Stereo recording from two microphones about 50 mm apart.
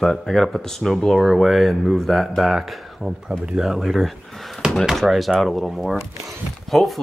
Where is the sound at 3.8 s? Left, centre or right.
Centre.